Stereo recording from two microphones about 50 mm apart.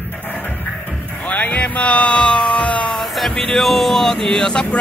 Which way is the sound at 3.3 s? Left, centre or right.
Centre.